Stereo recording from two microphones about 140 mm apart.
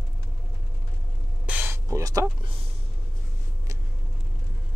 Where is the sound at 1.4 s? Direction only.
10° right (ahead or behind).